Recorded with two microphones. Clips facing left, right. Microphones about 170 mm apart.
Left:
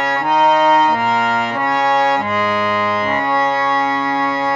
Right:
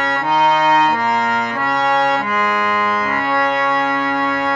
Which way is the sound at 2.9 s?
25° left (ahead or behind).